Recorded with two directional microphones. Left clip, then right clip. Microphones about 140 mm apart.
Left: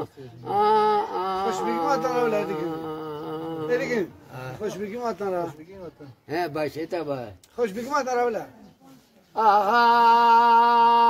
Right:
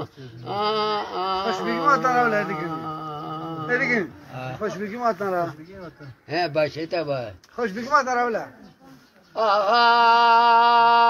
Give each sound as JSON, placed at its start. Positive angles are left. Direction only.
{"t": 0.0, "sound": "a sound", "side_deg": 45}
{"t": 2.7, "sound": "carnatic music", "side_deg": 50}
{"t": 3.6, "sound": "speech", "side_deg": 25}
{"t": 4.4, "sound": "a sound", "side_deg": 50}
{"t": 4.7, "sound": "speech", "side_deg": 35}
{"t": 8.2, "sound": "speech", "side_deg": 35}
{"t": 9.3, "sound": "mantra", "side_deg": 45}